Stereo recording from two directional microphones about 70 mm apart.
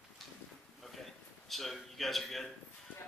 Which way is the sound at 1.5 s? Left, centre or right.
Centre.